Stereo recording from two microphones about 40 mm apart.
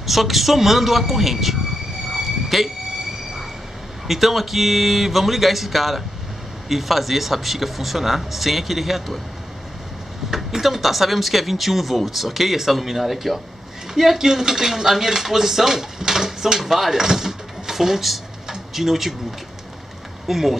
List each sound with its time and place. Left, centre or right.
0.0 s speech: centre
2.2 s a sound: centre
4.1 s speech: centre
10.3 s speech: centre
20.2 s speech: centre